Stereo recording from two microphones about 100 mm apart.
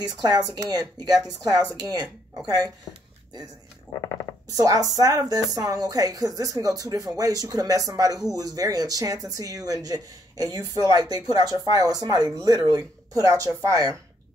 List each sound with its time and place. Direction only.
0.0 s speech: 40° right (ahead or behind)
4.6 s speech: 40° right (ahead or behind)